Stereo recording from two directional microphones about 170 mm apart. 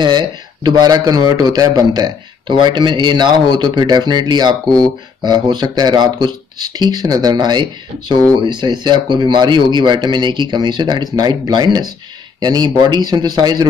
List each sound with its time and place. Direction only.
0.0 s speech: 25° right (ahead or behind)